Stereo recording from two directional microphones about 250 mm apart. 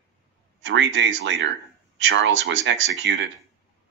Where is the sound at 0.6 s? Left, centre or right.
Right.